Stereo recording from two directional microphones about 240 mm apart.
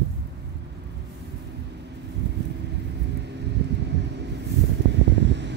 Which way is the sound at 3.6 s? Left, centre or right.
Right.